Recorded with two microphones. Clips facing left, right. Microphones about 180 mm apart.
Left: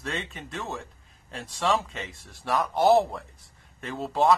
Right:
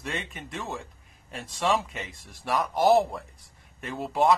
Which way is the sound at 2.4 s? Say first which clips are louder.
Left 1 dB; 20° left (ahead or behind).